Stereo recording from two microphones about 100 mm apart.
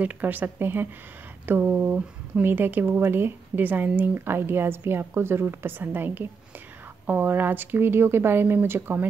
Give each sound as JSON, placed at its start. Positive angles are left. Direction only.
{"t": 0.0, "sound": "speech", "side_deg": -15}